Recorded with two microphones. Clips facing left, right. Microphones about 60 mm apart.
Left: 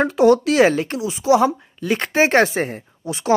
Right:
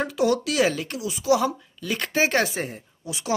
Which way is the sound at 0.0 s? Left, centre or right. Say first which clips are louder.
Left 8 dB; left.